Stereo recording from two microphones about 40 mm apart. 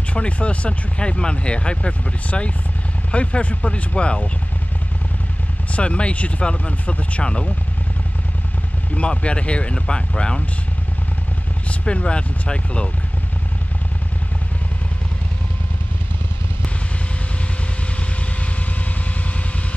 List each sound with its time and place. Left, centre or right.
0.1 s speech: left
5.7 s speech: left
8.9 s speech: left
11.8 s speech: left